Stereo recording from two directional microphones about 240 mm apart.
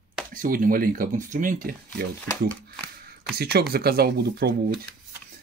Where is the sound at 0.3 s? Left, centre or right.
Right.